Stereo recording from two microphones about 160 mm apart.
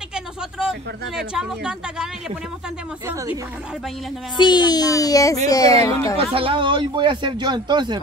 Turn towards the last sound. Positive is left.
turn(degrees=-30)  # may be behind; listen again after turning